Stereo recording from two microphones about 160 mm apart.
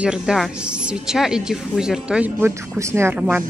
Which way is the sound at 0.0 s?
5° right (ahead or behind).